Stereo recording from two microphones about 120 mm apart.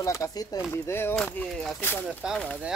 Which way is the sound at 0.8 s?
20° left (ahead or behind).